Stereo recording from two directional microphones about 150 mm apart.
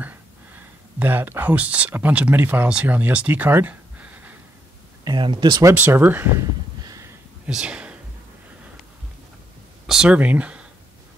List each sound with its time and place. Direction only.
0.0 s speech: 15° right (ahead or behind)
5.0 s speech: 30° right (ahead or behind)
7.4 s speech: 5° right (ahead or behind)
9.8 s speech: 5° right (ahead or behind)